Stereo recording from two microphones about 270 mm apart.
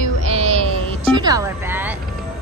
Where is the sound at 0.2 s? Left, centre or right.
Right; by 2.0 s centre.